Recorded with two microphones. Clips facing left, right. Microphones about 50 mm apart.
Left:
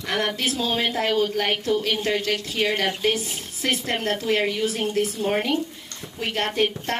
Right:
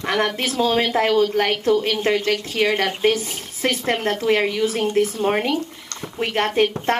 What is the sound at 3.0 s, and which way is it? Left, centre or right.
Speech, right.